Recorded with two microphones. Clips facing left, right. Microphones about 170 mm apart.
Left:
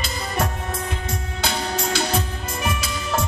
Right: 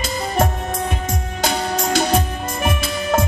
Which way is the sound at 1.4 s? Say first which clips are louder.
Right 4 dB; 45° right (ahead or behind).